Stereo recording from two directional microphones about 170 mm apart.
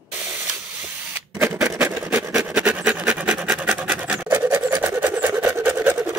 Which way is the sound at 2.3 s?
5° right (ahead or behind).